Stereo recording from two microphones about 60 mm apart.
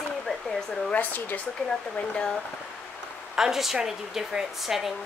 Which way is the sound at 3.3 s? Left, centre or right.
Centre.